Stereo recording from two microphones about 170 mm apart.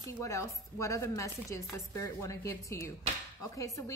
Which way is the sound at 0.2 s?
20° left (ahead or behind).